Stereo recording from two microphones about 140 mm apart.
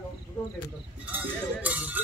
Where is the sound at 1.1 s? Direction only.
10° right (ahead or behind).